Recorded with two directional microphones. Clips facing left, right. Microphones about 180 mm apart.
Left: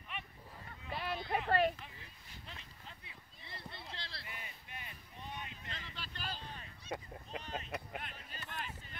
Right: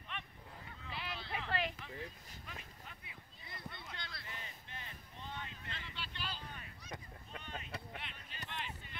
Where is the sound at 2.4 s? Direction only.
25° left (ahead or behind).